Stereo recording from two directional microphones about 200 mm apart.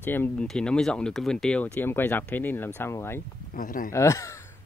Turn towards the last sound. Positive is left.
turn(degrees=15)  # may be behind; listen again after turning